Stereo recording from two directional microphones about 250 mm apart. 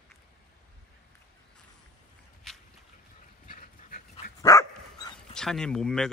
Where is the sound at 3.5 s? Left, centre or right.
Left.